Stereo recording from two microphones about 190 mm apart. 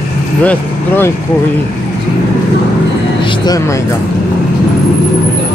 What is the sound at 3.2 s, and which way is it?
Music, 20° left (ahead or behind).